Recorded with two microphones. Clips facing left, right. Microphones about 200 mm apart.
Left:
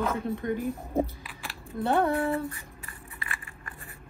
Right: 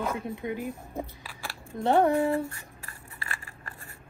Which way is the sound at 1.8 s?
15° right (ahead or behind).